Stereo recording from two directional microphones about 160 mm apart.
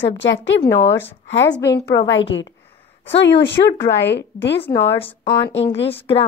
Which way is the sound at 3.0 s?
90° left.